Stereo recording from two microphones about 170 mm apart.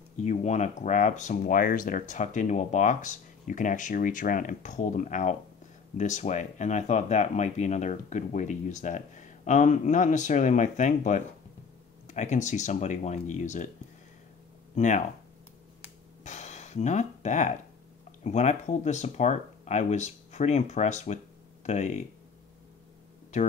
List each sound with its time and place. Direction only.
0.2 s speech: 45° left (ahead or behind)
14.8 s speech: 45° left (ahead or behind)
16.3 s a sound: 45° left (ahead or behind)
18.2 s speech: 45° left (ahead or behind)